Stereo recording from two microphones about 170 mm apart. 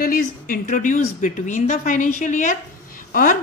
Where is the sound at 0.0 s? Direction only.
55° left (ahead or behind).